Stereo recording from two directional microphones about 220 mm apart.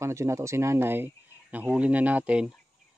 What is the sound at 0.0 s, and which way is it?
Speech, 10° right (ahead or behind).